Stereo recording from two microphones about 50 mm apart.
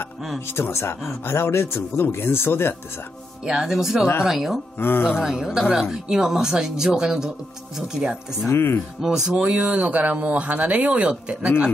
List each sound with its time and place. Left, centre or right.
0.6 s speech: left
2.0 s speech: left
3.4 s speech: centre
4.7 s speech: left
5.2 s speech: centre
8.5 s speech: left
9.0 s speech: centre
9.6 s speech: right